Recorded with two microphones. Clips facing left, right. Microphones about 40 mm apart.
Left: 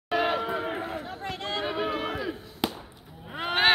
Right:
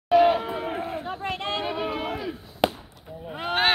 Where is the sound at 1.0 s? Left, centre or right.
Right.